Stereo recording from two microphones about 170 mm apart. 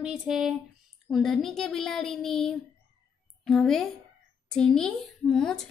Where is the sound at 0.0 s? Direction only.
5° right (ahead or behind).